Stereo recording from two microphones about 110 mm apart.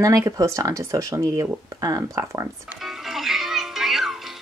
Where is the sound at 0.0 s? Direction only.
30° right (ahead or behind).